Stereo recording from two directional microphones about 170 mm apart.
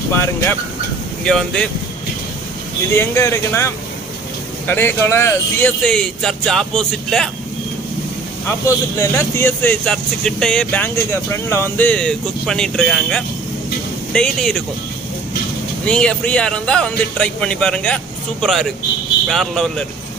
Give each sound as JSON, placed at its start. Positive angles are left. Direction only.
{"t": 1.2, "sound": "a man's voice", "side_deg": 5}
{"t": 2.9, "sound": "a man's voice", "side_deg": 15}
{"t": 8.5, "sound": "a man's voice", "side_deg": 15}
{"t": 15.8, "sound": "a man's voice", "side_deg": 5}